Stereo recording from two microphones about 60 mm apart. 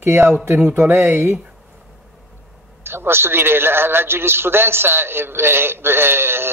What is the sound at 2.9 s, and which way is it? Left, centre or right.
A man's voice, right.